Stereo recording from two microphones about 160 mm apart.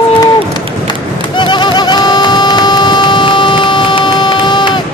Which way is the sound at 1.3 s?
30° left (ahead or behind).